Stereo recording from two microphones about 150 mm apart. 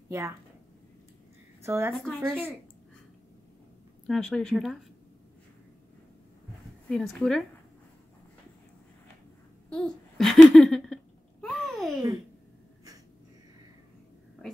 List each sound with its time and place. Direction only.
0.1 s a woman's voice: 20° right (ahead or behind)
1.6 s a woman's voice: 20° right (ahead or behind)
2.0 s speech: 5° left (ahead or behind)
4.1 s speech: 5° left (ahead or behind)
6.9 s speech: 5° left (ahead or behind)
9.7 s speech: 5° left (ahead or behind)
11.4 s a sound: centre (ahead or behind)